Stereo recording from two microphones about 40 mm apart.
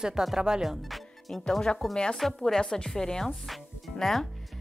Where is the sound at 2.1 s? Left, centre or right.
Centre.